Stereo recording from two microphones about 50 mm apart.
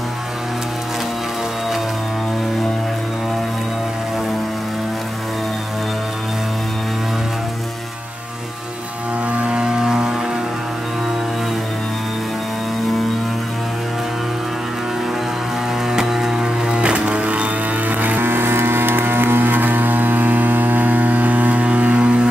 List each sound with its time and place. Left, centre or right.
9.3 s vehicle: right
9.6 s vehicle: centre
15.9 s music: centre; by 18.2 s right
18.2 s a sound: right